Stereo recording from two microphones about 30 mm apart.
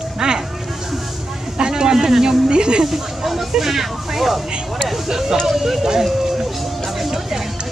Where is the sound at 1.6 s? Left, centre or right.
Right.